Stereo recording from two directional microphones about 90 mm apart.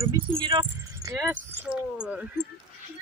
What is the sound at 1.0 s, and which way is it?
Speech, 35° right (ahead or behind).